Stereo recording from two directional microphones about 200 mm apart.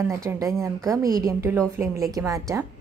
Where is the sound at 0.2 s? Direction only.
15° right (ahead or behind).